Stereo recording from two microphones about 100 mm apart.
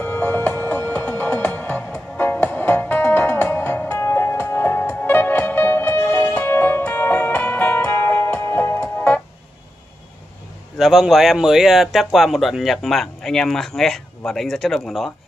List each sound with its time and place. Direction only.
0.0 s music: 15° left (ahead or behind)
10.8 s speech: centre (ahead or behind)